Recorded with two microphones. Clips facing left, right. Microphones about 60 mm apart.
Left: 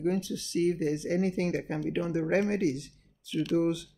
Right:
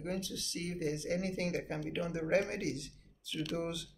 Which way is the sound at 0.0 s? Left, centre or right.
Left.